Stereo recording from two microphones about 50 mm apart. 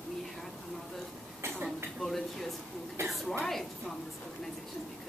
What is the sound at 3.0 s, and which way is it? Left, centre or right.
Speech, right.